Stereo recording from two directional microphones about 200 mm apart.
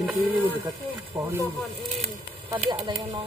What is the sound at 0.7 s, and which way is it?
Speech, 15° right (ahead or behind).